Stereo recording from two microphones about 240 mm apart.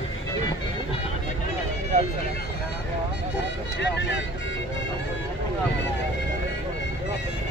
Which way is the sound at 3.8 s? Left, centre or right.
Left.